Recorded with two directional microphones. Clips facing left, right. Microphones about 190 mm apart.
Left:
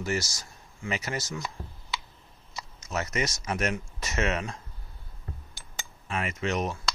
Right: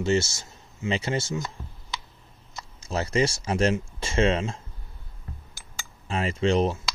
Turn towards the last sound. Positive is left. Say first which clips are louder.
# right 7 dB
turn(degrees=-30)  # may be behind; listen again after turning